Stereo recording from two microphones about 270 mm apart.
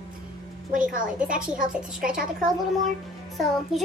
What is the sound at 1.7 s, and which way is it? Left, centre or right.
Speech, centre.